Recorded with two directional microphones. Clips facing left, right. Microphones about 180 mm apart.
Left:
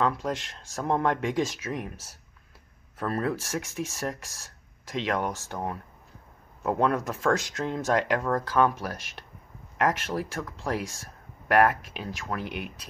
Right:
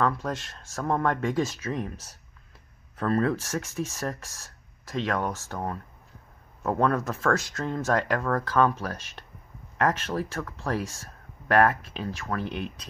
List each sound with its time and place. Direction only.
0.0 s speech: 15° left (ahead or behind)